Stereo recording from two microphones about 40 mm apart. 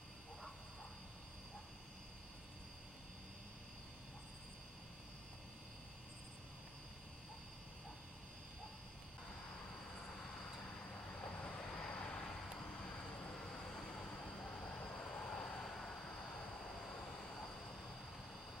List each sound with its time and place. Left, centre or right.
11.1 s train: left
11.4 s vehicle: left
13.5 s vehicle: left